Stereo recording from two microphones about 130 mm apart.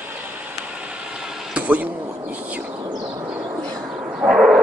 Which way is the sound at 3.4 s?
30° right (ahead or behind).